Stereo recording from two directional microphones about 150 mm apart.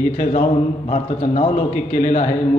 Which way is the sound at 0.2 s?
60° left (ahead or behind).